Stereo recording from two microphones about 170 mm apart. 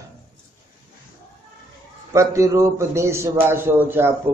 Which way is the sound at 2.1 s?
20° right (ahead or behind).